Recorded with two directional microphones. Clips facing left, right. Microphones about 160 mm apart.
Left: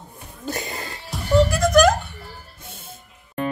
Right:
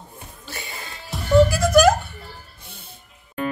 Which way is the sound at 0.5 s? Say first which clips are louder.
Left 8 dB; 40° left (ahead or behind).